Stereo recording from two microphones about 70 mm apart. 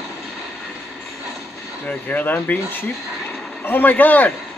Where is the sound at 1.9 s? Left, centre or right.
Left.